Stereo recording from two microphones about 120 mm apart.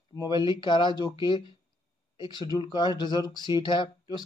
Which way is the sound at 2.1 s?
40° left (ahead or behind).